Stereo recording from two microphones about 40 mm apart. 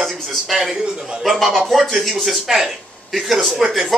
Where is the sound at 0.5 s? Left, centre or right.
Centre.